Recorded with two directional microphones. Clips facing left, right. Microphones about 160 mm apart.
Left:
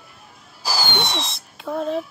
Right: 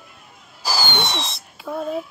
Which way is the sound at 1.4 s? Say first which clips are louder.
Left 2 dB; centre (ahead or behind).